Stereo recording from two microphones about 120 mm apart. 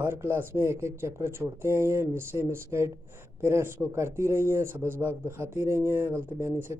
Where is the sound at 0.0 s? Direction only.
20° right (ahead or behind).